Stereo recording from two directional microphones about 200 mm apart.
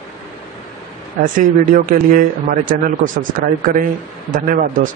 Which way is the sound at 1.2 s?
40° right (ahead or behind).